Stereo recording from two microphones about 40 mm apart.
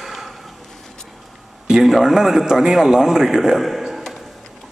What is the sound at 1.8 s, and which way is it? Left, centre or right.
A man's voice, centre.